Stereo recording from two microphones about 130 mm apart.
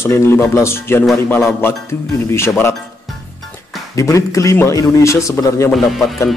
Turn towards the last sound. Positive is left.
turn(degrees=0)  # may be behind; listen again after turning